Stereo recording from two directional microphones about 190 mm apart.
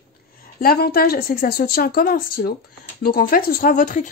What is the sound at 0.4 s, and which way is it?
A woman's voice, 50° left (ahead or behind).